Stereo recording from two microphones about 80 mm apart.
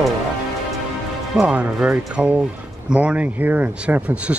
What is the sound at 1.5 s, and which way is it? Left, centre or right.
Speech, centre.